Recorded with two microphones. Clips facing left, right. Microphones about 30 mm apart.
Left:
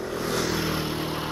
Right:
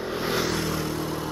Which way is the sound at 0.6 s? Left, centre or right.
Left.